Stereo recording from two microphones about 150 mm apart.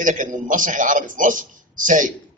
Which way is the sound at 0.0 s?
60° right (ahead or behind).